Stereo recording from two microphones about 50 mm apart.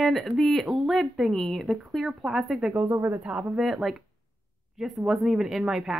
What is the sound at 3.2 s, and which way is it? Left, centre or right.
Speech, right.